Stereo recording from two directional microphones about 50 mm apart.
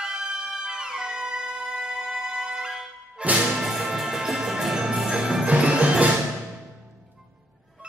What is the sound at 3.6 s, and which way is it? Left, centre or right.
Music, centre.